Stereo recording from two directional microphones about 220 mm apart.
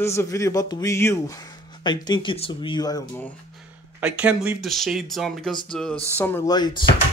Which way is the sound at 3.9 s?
5° right (ahead or behind).